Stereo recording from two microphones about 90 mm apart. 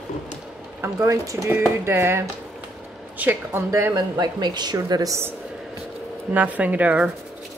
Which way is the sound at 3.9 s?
50° right (ahead or behind).